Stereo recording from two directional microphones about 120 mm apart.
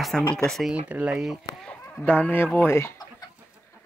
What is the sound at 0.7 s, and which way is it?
Speech, 10° right (ahead or behind).